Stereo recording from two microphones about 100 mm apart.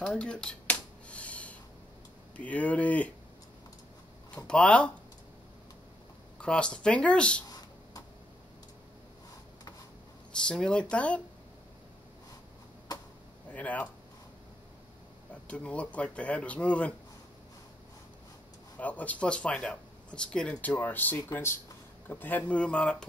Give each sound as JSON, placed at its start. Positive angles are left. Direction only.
{"t": 0.0, "sound": "a sound", "side_deg": 10}
{"t": 2.3, "sound": "speech", "side_deg": 15}
{"t": 4.5, "sound": "speech", "side_deg": 10}
{"t": 6.4, "sound": "speech", "side_deg": 10}
{"t": 7.4, "sound": "a sound", "side_deg": 40}
{"t": 10.3, "sound": "speech", "side_deg": 10}
{"t": 13.5, "sound": "speech", "side_deg": 15}
{"t": 15.4, "sound": "speech", "side_deg": 10}
{"t": 18.8, "sound": "speech", "side_deg": 15}